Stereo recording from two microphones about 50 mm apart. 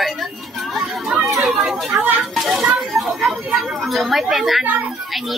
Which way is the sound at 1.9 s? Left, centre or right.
Right.